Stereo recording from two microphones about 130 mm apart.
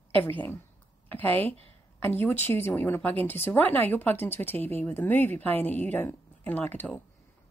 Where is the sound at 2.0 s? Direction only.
15° left (ahead or behind).